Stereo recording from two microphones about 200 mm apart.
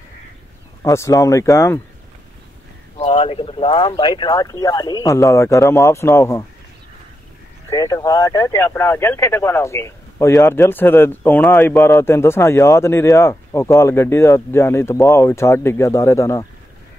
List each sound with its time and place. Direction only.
0.8 s speech: 15° left (ahead or behind)
3.0 s speech: 30° left (ahead or behind)
7.7 s speech: 15° left (ahead or behind)